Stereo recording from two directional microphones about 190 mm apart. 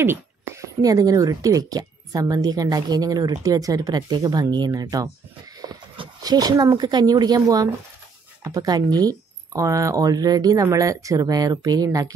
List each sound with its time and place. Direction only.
0.0 s speech: 15° right (ahead or behind)